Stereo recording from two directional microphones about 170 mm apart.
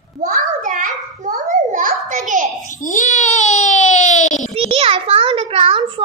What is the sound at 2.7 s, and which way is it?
Speech, 50° left (ahead or behind).